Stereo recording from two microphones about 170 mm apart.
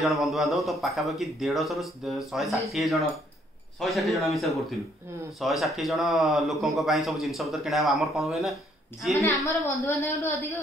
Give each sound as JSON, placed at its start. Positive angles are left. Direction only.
{"t": 0.0, "sound": "a man's voice", "side_deg": 0}
{"t": 9.1, "sound": "a woman's voice", "side_deg": 20}